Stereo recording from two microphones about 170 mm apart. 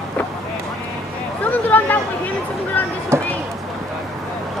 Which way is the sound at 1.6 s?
10° left (ahead or behind).